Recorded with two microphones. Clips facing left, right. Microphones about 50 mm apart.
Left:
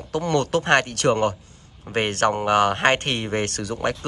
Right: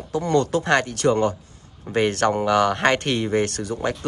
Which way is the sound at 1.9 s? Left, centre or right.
Left.